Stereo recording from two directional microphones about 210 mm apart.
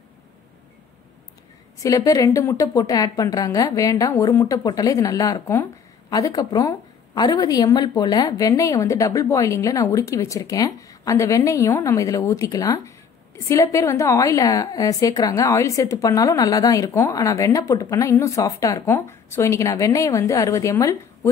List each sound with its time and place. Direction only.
1.8 s a woman's voice: 15° left (ahead or behind)